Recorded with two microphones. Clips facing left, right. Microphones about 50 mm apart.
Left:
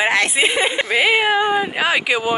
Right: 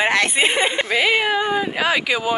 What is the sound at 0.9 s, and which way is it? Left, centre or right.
Speech, centre.